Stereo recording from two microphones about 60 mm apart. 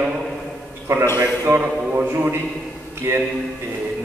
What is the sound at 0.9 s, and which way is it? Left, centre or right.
Speech, right.